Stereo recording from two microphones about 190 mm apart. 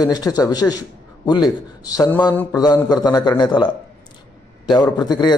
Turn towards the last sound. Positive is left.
turn(degrees=20)  # may be behind; listen again after turning